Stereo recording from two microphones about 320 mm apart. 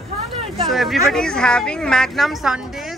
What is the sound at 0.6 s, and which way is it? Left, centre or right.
Speech, centre.